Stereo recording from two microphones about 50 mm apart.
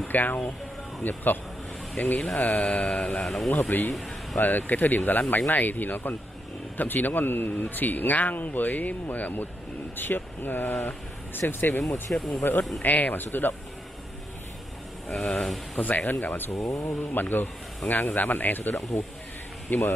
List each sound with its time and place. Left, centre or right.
0.1 s speech: left
2.3 s mantra: left
3.3 s speech: centre
4.4 s speech: left
11.8 s speech: centre
12.4 s speech: left
15.4 s speech: centre
16.1 s speech: left
16.5 s speech: left
17.0 s speech: left